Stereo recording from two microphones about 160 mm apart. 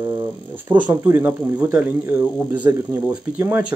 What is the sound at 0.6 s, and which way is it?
Speech, 10° right (ahead or behind).